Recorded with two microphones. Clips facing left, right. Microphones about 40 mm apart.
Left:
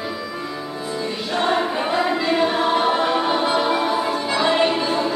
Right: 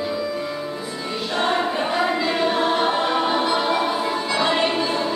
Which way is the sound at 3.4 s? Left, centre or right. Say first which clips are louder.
Left 1 dB; centre.